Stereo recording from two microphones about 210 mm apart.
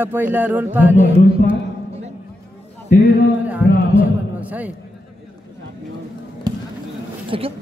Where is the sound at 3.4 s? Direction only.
5° right (ahead or behind).